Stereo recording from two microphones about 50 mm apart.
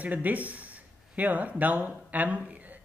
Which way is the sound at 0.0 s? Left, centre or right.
Right.